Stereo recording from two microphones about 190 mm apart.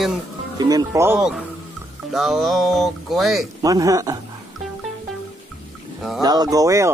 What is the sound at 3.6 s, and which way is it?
Speech, 20° right (ahead or behind).